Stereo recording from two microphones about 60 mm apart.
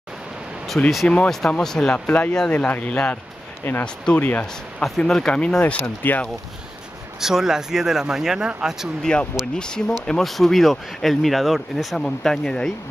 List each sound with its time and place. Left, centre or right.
0.7 s speech: centre
2.5 s speech: left
4.2 s speech: left
4.8 s speech: centre
5.5 s speech: left
7.2 s speech: centre
9.0 s speech: centre
10.0 s speech: centre